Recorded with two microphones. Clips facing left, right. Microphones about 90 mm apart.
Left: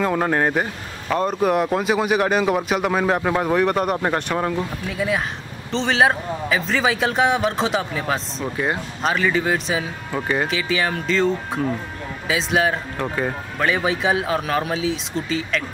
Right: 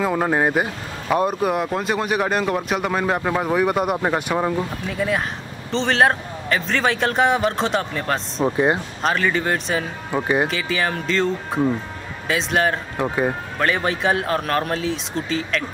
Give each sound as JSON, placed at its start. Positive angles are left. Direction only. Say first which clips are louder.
{"t": 0.0, "sound": "speech", "louder": "even", "side_deg": -5}
{"t": 1.4, "sound": "speech", "louder": "left 2 dB", "side_deg": 0}
{"t": 8.5, "sound": "speech", "louder": "right 5 dB", "side_deg": -25}
{"t": 9.0, "sound": "speech", "louder": "left 1 dB", "side_deg": 0}
{"t": 10.1, "sound": "speech", "louder": "right 3 dB", "side_deg": -15}
{"t": 10.5, "sound": "speech", "louder": "left 1 dB", "side_deg": 0}
{"t": 12.9, "sound": "speech", "louder": "right 3 dB", "side_deg": -15}
{"t": 13.6, "sound": "speech", "louder": "left 1 dB", "side_deg": 0}